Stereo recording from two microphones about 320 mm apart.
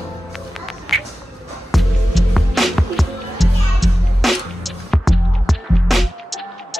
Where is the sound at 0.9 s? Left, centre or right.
Centre.